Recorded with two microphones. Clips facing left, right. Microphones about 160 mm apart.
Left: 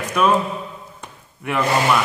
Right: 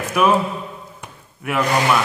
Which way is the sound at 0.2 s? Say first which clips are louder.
Right 1 dB; 10° right (ahead or behind).